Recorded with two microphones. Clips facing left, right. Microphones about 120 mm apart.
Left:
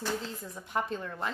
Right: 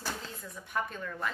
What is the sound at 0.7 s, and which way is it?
Speech, 30° left (ahead or behind).